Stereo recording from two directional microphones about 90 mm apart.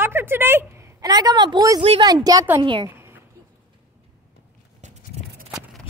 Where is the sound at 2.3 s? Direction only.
45° right (ahead or behind).